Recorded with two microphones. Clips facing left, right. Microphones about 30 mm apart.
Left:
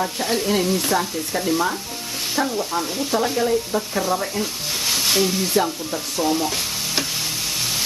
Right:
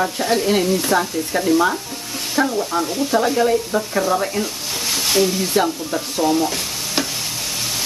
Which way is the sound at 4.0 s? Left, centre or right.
Centre.